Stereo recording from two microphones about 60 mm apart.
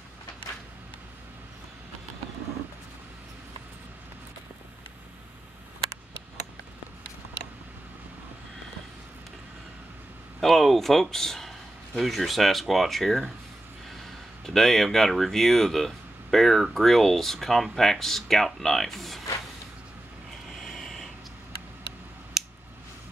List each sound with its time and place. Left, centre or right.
10.4 s speech: centre
14.4 s speech: centre
20.4 s a sound: centre